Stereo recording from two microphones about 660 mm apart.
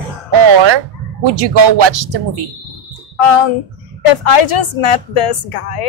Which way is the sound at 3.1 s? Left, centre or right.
Left.